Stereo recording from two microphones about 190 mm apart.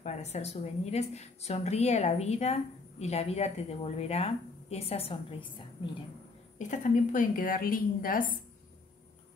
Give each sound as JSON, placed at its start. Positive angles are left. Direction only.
{"t": 0.0, "sound": "a woman's voice", "side_deg": 35}
{"t": 6.6, "sound": "a woman's voice", "side_deg": 40}